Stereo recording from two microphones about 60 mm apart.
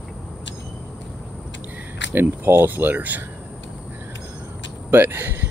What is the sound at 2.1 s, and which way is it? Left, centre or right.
Speech, right.